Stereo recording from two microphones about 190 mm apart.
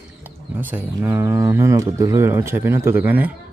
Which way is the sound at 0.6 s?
10° right (ahead or behind).